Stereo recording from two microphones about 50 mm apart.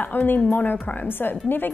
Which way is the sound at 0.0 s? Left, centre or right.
Left.